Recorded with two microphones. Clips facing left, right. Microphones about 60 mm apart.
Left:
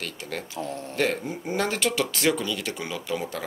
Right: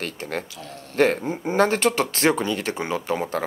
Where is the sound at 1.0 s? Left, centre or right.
Right.